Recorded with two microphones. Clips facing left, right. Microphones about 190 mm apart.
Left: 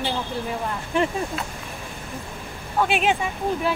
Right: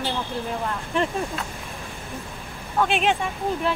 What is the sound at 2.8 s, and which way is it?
Speech, 5° left (ahead or behind).